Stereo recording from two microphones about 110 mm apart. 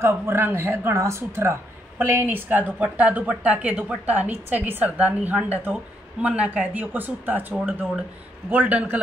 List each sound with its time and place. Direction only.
0.0 s speech: 20° right (ahead or behind)